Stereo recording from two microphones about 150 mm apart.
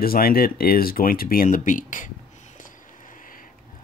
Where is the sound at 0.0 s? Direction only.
80° left; by 2.0 s 60° left (ahead or behind).